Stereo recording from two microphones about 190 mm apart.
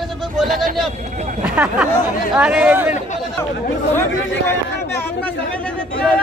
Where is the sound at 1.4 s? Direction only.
5° right (ahead or behind).